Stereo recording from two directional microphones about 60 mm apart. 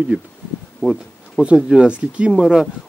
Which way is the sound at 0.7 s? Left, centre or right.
Centre.